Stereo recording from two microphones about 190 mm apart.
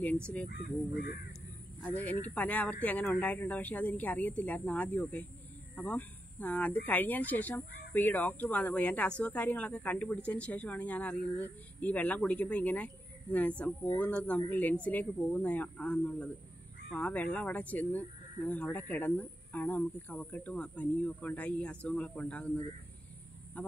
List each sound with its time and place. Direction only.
0.5 s speech: 50° left (ahead or behind)
1.8 s speech: 10° left (ahead or behind)